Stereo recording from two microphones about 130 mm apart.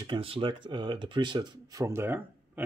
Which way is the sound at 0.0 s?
45° right (ahead or behind).